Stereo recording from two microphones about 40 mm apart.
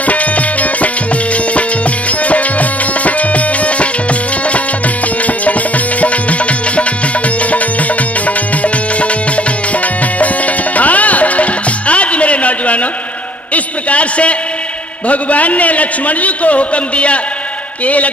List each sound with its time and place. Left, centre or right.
0.0 s music: left
2.0 s music: left
8.3 s music: left
10.1 s music: left
13.5 s a sound: left
15.0 s a man's voice: left